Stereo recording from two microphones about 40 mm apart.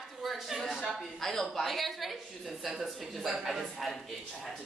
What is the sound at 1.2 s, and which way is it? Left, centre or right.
A woman's voice, centre.